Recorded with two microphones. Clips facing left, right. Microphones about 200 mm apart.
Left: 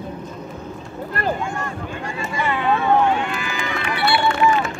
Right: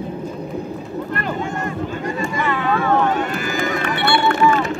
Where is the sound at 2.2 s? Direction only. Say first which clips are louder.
Even; 15° left (ahead or behind).